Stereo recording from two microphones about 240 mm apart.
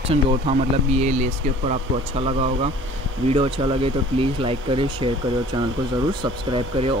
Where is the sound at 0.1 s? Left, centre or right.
Right.